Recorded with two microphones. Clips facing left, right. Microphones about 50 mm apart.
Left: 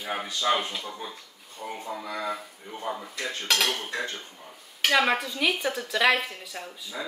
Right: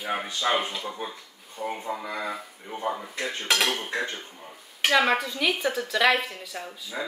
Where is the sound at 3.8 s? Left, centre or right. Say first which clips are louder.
Right 2 dB; right.